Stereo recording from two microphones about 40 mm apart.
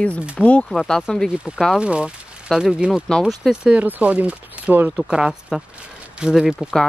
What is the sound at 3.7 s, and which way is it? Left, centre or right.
Speech, right.